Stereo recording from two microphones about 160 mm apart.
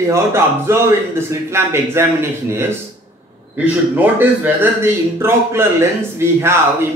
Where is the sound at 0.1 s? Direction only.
15° right (ahead or behind).